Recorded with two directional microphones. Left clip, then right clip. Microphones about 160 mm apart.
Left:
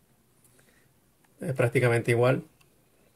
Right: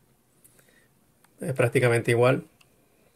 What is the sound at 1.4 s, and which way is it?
Speech, 10° right (ahead or behind).